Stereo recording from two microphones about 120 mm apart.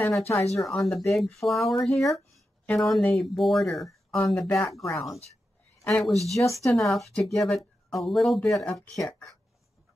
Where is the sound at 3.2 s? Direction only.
Centre (ahead or behind).